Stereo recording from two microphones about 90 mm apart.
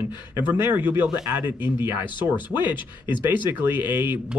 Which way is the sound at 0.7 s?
20° right (ahead or behind).